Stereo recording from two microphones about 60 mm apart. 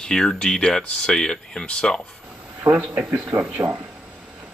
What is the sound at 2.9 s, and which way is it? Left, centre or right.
Speech, right.